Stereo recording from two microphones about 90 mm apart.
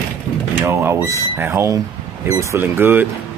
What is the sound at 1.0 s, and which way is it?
Speech, 35° right (ahead or behind).